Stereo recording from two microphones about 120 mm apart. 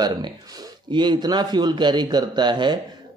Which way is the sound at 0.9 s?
40° right (ahead or behind).